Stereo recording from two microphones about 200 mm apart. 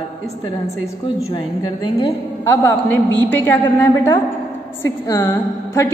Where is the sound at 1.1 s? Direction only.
30° left (ahead or behind); by 3.6 s 10° left (ahead or behind).